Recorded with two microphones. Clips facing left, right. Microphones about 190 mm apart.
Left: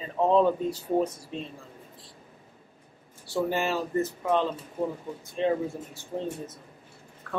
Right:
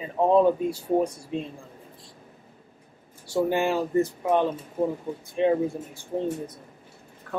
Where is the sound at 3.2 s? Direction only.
15° right (ahead or behind).